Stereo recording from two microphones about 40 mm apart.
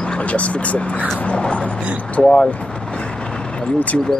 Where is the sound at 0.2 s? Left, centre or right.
Left.